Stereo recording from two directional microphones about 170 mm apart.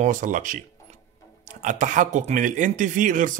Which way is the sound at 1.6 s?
45° right (ahead or behind).